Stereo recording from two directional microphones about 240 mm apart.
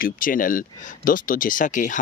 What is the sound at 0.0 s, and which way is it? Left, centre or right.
Speech, left.